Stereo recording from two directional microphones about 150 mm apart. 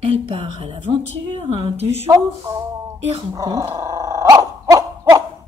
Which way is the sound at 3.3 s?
25° right (ahead or behind).